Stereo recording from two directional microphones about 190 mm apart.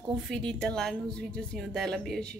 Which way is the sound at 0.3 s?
5° left (ahead or behind).